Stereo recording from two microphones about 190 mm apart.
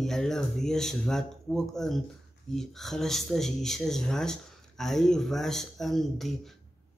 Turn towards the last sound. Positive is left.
turn(degrees=0)  # may be behind; listen again after turning